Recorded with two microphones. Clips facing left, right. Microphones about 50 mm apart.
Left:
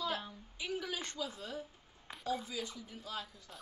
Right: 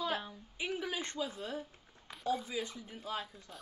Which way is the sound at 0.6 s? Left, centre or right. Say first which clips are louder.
Right 2 dB; right.